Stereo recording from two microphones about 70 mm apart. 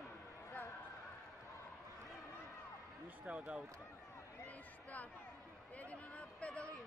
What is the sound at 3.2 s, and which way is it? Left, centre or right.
Speech, centre.